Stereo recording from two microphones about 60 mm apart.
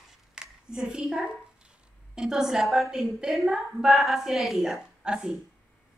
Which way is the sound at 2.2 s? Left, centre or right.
Centre.